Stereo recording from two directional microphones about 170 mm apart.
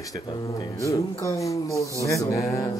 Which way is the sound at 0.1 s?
25° left (ahead or behind).